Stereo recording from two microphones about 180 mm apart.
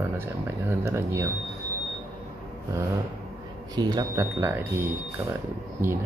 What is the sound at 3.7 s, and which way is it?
Speech, 20° right (ahead or behind).